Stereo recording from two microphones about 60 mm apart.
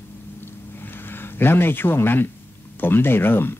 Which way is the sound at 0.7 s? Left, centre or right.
Left.